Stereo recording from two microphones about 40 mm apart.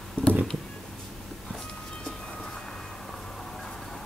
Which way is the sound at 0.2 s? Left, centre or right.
Left.